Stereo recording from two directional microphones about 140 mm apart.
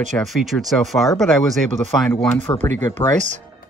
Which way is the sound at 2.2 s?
10° left (ahead or behind).